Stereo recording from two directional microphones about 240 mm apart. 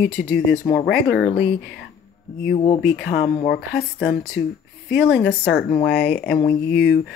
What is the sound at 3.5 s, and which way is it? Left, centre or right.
A woman's voice, left.